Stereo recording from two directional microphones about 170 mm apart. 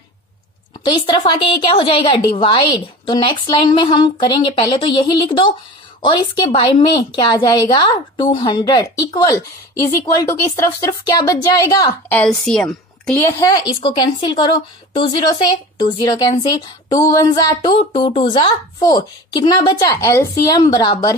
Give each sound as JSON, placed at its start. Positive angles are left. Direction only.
{"t": 1.0, "sound": "a woman's voice", "side_deg": 25}
{"t": 12.2, "sound": "a woman's voice", "side_deg": 5}
{"t": 13.4, "sound": "a woman's voice", "side_deg": 25}
{"t": 17.5, "sound": "a woman's voice", "side_deg": 25}